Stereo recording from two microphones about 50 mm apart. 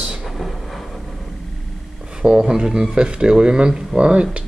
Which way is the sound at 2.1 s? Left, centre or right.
Centre.